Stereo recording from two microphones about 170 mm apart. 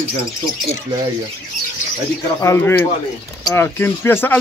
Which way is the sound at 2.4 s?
15° left (ahead or behind).